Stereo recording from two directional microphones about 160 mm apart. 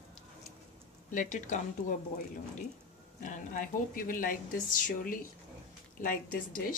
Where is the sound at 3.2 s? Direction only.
55° left (ahead or behind).